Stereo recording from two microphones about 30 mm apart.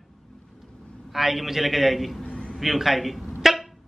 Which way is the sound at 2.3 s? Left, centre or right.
Left.